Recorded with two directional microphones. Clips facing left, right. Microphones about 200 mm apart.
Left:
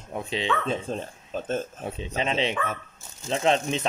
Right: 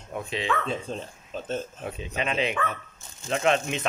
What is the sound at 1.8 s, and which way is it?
Speech, 30° left (ahead or behind).